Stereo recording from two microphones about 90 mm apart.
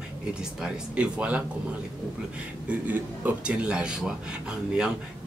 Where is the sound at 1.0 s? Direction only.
15° right (ahead or behind).